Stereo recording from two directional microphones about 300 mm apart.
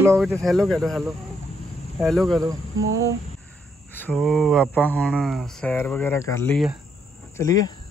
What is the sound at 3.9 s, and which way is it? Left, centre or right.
Speech, centre.